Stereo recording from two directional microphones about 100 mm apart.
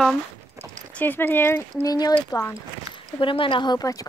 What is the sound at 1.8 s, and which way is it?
Speech, 40° left (ahead or behind).